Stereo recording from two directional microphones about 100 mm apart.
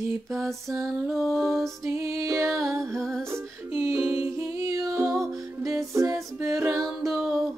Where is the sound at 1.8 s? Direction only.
25° right (ahead or behind).